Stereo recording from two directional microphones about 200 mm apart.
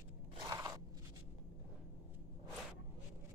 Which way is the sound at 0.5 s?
15° right (ahead or behind).